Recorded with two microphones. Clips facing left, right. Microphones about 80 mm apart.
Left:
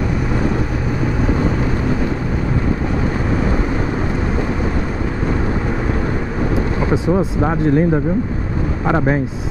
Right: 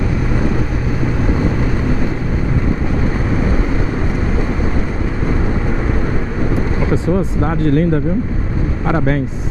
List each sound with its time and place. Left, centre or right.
6.9 s speech: centre